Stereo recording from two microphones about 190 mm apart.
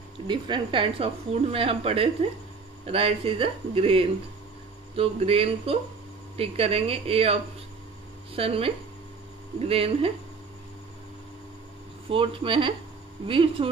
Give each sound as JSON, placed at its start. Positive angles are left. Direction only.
{"t": 0.3, "sound": "speech", "side_deg": -25}
{"t": 8.4, "sound": "speech", "side_deg": -30}
{"t": 12.1, "sound": "speech", "side_deg": -25}